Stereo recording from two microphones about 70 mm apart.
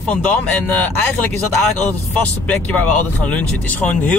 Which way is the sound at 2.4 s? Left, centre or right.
Centre.